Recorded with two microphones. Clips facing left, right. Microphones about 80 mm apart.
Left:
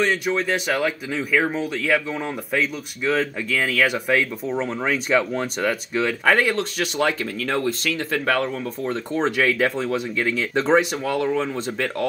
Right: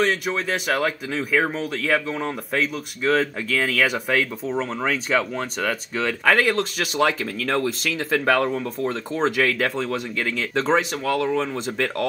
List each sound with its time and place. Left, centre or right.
0.0 s speech: centre
3.1 s speech: centre